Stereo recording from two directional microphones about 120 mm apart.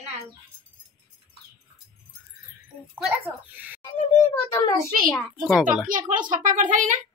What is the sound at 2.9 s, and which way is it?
Speech, 15° right (ahead or behind).